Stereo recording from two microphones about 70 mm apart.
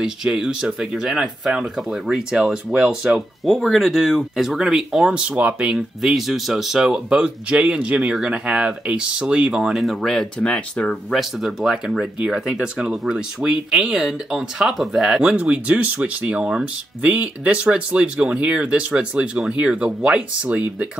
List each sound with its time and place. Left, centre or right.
0.0 s speech: centre
5.2 s speech: centre
6.0 s speech: centre
11.1 s speech: centre
15.2 s speech: centre